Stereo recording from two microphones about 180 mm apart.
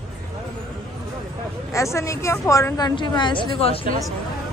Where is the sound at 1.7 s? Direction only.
15° left (ahead or behind); by 3.8 s 30° left (ahead or behind).